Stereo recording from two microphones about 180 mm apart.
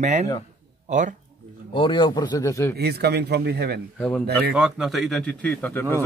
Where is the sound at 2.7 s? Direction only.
65° right (ahead or behind).